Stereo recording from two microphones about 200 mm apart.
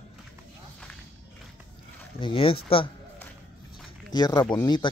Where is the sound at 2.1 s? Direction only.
25° left (ahead or behind).